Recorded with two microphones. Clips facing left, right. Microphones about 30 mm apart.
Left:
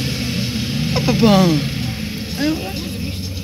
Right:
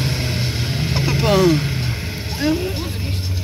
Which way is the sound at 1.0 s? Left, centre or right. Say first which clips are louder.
Left 3 dB; centre.